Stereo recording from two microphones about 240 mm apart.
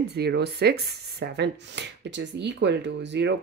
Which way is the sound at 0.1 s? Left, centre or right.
Right.